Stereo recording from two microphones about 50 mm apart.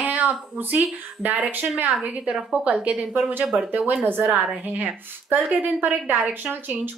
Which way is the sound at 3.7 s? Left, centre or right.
Right.